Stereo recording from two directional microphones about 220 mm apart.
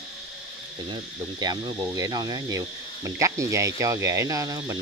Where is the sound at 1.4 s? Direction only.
15° right (ahead or behind).